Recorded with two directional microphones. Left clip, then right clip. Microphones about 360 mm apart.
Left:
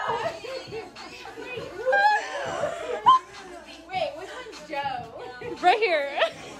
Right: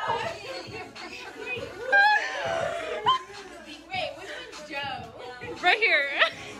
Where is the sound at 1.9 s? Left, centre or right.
Centre.